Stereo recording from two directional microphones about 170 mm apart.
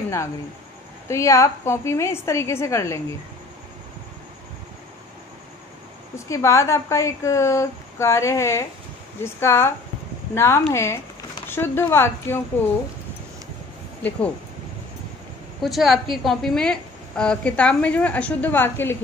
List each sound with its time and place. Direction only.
1.0 s a woman's voice: 15° left (ahead or behind)
6.1 s a woman's voice: 15° left (ahead or behind)
15.6 s a woman's voice: centre (ahead or behind)